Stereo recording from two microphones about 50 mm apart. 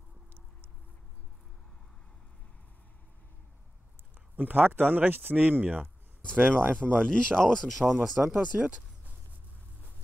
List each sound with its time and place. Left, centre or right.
4.4 s speech: right
6.5 s speech: centre
7.8 s speech: centre